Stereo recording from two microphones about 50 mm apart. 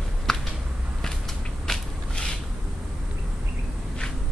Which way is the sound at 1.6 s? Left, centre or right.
Centre.